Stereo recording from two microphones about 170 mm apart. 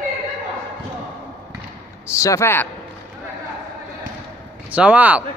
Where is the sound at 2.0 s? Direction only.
15° left (ahead or behind).